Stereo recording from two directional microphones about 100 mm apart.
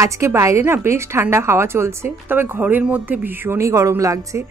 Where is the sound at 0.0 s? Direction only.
30° right (ahead or behind).